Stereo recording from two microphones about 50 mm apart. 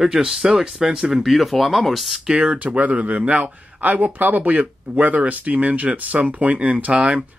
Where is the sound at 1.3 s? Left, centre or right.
Centre.